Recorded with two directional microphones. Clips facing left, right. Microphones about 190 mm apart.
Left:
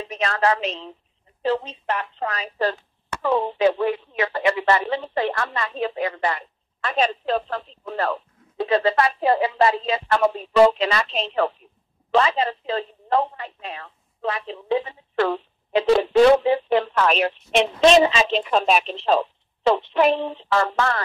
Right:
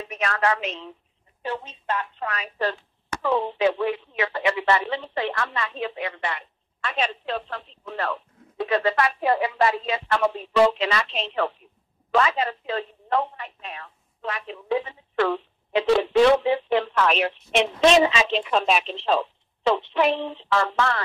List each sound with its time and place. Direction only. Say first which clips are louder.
0.0 s a woman's voice: left 3 dB; 30° left (ahead or behind)
2.1 s a woman's voice: left 3 dB; 35° left (ahead or behind)